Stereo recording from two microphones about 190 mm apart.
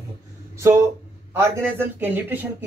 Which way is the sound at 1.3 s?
10° right (ahead or behind).